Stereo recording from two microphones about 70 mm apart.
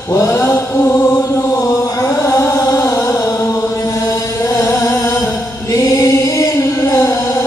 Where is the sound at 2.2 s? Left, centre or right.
Left.